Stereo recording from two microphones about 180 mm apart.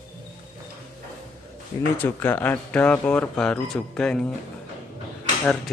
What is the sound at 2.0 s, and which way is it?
Speech, 10° left (ahead or behind).